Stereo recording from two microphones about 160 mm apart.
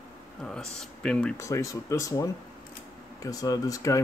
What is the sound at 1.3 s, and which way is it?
Speech, 20° left (ahead or behind).